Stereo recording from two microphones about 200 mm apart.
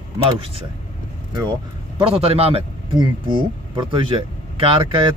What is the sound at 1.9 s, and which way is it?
Speech, 30° right (ahead or behind).